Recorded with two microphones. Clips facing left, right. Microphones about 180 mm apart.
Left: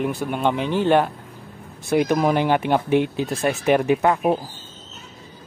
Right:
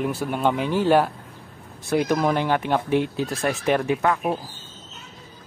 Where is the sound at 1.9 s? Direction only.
10° left (ahead or behind).